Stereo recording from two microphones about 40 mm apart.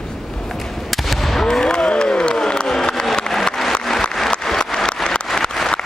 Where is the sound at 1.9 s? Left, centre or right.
Left.